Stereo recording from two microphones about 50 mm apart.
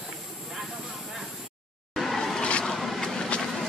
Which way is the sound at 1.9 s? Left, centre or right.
Centre.